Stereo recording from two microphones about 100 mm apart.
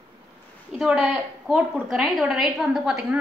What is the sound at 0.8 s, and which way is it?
A woman's voice, 5° right (ahead or behind).